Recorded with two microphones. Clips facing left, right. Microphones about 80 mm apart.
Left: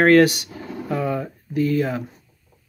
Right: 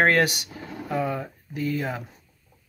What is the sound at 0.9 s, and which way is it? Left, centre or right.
Speech, centre.